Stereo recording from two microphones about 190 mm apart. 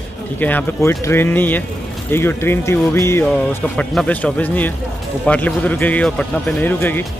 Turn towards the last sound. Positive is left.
turn(degrees=10)  # may be behind; listen again after turning